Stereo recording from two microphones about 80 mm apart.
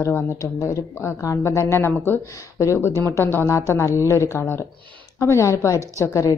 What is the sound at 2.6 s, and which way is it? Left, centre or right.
A woman's voice, left.